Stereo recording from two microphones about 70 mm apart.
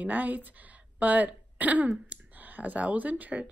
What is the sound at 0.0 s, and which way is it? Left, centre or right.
Speech, right.